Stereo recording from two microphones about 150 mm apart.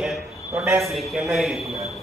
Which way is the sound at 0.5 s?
10° right (ahead or behind).